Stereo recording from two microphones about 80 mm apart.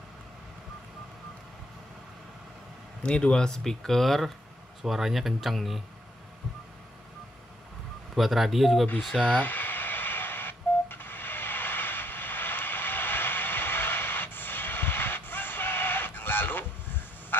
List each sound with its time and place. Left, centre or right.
3.0 s speech: centre
8.1 s speech: centre
9.2 s radio: left